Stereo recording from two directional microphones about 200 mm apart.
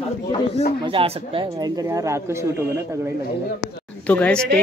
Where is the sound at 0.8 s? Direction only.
30° right (ahead or behind).